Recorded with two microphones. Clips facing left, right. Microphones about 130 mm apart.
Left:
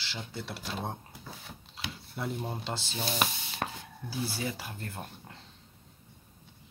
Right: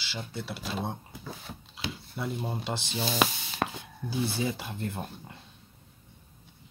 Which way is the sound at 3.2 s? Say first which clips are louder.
Right 5 dB; 90° right.